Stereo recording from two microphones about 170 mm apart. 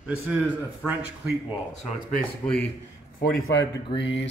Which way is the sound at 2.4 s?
5° left (ahead or behind).